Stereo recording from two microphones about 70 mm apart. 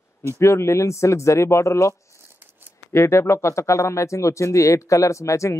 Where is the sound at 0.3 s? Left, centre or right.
Left.